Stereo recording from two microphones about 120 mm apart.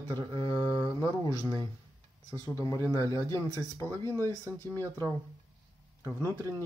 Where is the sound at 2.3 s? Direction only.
25° left (ahead or behind).